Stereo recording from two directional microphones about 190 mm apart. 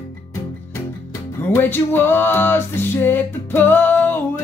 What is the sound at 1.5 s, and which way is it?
Music, 10° left (ahead or behind).